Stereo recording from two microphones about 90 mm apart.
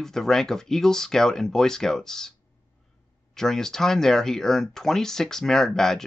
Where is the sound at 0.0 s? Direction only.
5° left (ahead or behind).